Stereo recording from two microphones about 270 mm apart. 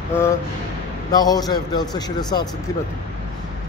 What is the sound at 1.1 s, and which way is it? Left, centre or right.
A man's voice, centre.